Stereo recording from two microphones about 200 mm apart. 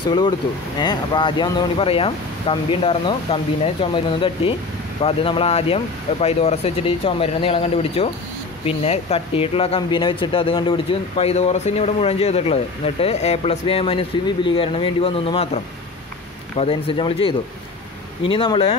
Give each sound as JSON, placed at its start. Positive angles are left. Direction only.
{"t": 0.7, "sound": "speech", "side_deg": 20}